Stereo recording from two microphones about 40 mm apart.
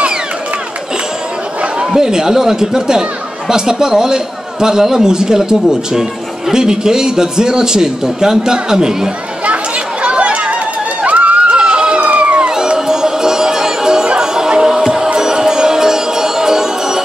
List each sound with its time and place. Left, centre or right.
2.0 s speech: centre
10.0 s chatter: right
11.5 s a sound: right
12.0 s crowd: right
12.4 s music: centre